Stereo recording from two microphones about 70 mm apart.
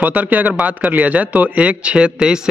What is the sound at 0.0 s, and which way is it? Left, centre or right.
A man's voice, right.